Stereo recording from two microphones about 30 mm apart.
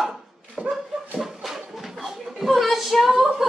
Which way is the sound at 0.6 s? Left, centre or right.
Right.